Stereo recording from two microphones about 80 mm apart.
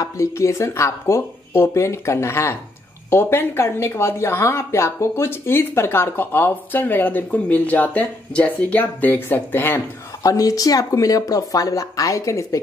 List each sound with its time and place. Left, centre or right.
0.0 s speech: left
10.2 s speech: left